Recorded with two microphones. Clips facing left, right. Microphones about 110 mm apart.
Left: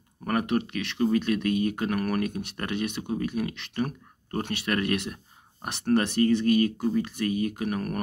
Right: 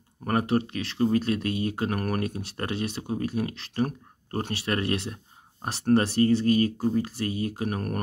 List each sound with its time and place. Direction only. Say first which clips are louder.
0.2 s speech: right 1 dB; 30° right (ahead or behind)